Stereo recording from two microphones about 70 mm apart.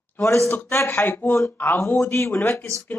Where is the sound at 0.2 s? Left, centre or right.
Left.